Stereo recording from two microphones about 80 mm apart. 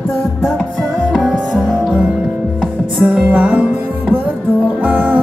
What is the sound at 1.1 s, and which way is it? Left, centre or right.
Music, centre.